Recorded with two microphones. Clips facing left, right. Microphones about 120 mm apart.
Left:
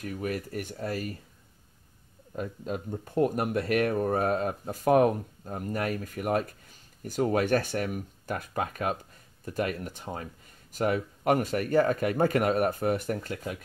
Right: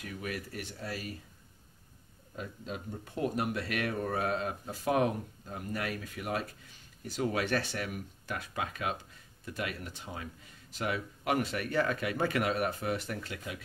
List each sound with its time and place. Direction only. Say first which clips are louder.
0.0 s speech: left 6 dB; 45° left (ahead or behind)
2.3 s speech: left 7 dB; 45° left (ahead or behind)